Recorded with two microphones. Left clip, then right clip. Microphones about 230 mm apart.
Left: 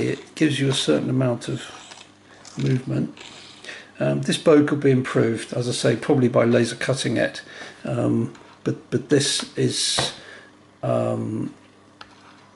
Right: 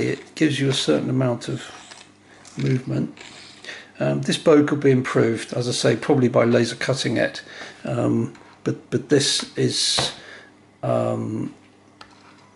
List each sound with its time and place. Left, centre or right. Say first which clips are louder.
0.0 s speech: right 1 dB; centre